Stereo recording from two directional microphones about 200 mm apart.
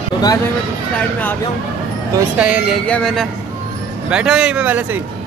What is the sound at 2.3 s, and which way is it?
Speech, 5° right (ahead or behind).